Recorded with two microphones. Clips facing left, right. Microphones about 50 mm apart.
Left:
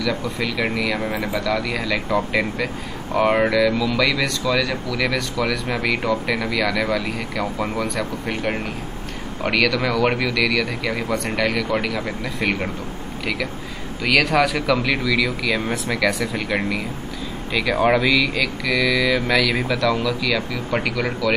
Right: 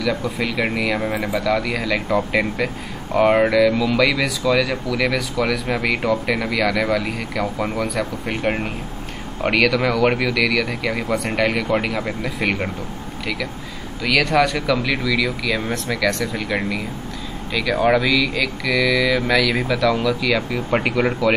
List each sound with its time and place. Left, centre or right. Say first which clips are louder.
0.0 s speech: right 1 dB; centre
1.1 s speech: right 2 dB; right
1.4 s speech: right 2 dB; centre
9.4 s speech: right 2 dB; centre
14.0 s speech: even; centre; by 21.3 s right